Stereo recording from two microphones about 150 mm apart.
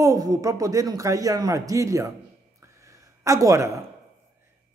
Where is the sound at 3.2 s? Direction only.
20° right (ahead or behind).